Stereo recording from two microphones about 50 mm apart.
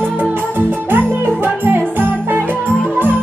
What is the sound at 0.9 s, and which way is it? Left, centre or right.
Music, right.